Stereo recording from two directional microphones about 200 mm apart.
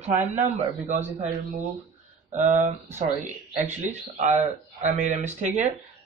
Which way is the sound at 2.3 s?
35° right (ahead or behind).